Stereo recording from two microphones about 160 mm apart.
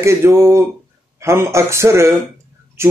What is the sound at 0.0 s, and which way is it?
Speech, 15° right (ahead or behind).